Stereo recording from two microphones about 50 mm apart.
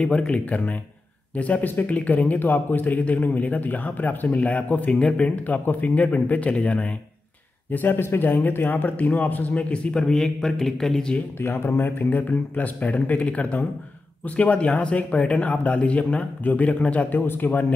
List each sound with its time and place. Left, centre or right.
0.3 s a man's voice: left
7.7 s a man's voice: left
10.0 s a man's voice: centre
11.4 s speech: left
12.1 s a man's voice: left